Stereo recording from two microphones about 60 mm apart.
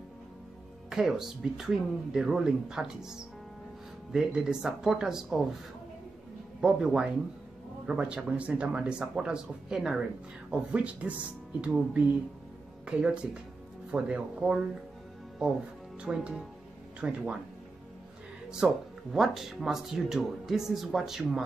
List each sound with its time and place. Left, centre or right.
0.8 s speech: centre
6.6 s speech: centre
16.0 s speech: centre
19.1 s speech: centre